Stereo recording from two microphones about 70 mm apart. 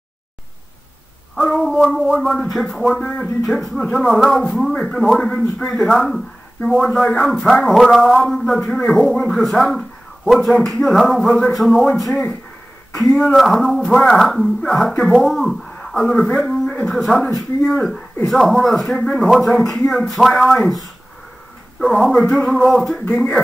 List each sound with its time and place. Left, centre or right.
1.3 s child singing: centre
2.0 s speech: centre
3.0 s speech: centre
3.4 s speech: centre
21.7 s speech: centre